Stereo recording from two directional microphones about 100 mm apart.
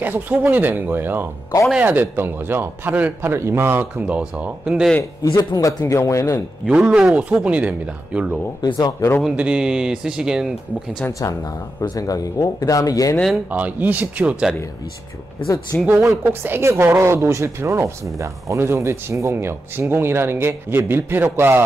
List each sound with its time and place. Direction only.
0.0 s a woman's voice: 15° right (ahead or behind)
5.2 s speech: 40° left (ahead or behind)
6.7 s speech: 10° right (ahead or behind)
8.5 s speech: 50° left (ahead or behind)
9.2 s speech: 10° right (ahead or behind)
11.1 s speech: 35° left (ahead or behind)
13.5 s speech: 15° right (ahead or behind)
15.4 s speech: 35° left (ahead or behind)
16.3 s a woman's voice: 20° right (ahead or behind)